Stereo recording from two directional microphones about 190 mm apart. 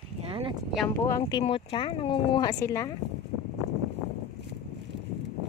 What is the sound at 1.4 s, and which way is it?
Speech, 30° left (ahead or behind).